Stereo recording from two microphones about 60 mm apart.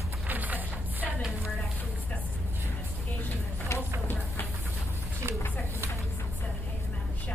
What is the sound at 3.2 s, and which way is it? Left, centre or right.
Speech, left.